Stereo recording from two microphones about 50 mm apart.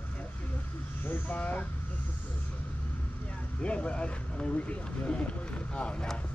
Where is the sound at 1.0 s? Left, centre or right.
Left.